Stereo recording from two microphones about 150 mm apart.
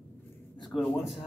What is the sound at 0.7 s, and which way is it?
Speech, centre (ahead or behind).